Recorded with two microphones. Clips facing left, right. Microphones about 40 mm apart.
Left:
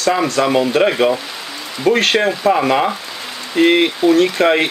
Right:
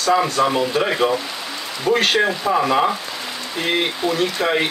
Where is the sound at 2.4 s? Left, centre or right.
Left.